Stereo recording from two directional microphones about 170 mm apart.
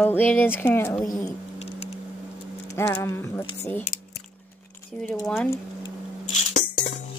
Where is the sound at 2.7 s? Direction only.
10° left (ahead or behind).